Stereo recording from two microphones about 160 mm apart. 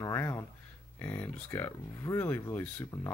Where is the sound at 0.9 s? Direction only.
10° left (ahead or behind).